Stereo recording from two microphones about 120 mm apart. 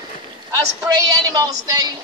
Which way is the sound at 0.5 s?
30° right (ahead or behind).